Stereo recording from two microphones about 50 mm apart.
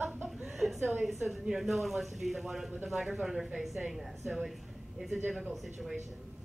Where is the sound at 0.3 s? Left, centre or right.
Centre.